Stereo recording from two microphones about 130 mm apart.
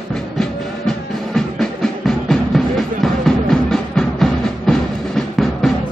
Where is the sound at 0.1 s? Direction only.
5° left (ahead or behind).